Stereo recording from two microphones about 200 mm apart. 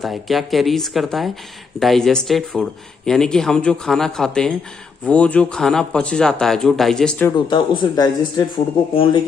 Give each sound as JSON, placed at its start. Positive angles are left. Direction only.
{"t": 0.0, "sound": "speech", "side_deg": 0}
{"t": 7.3, "sound": "speech", "side_deg": 25}